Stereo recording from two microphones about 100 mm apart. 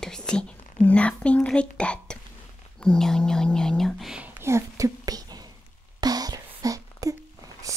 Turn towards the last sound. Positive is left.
turn(degrees=-35)  # may be behind; listen again after turning